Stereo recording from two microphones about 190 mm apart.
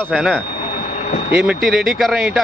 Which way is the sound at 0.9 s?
40° left (ahead or behind).